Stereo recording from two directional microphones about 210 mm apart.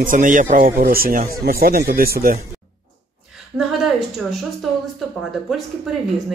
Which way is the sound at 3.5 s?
Centre (ahead or behind).